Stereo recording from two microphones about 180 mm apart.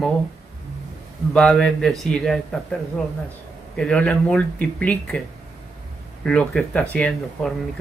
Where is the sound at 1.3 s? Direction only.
5° left (ahead or behind).